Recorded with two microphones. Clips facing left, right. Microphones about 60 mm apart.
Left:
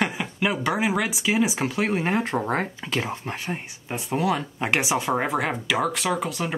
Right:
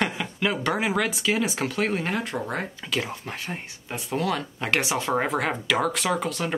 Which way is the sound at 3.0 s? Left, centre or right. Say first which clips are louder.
Left 2 dB; centre.